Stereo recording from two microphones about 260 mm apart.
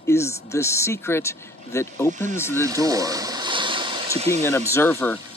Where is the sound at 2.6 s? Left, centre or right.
Centre.